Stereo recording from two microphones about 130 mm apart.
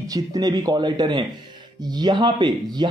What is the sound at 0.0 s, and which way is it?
A man's voice, 25° right (ahead or behind).